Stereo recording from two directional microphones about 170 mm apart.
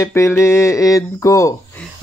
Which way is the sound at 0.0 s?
15° left (ahead or behind).